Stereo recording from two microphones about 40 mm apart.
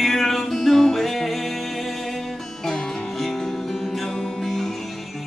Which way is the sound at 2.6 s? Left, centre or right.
Centre.